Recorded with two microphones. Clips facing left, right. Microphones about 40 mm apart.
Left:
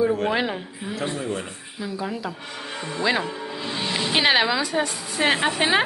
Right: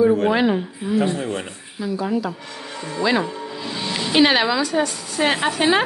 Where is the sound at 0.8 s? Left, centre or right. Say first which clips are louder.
Right 6 dB; centre.